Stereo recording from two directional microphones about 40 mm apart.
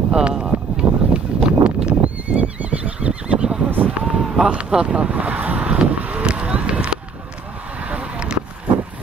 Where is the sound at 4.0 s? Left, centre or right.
Right.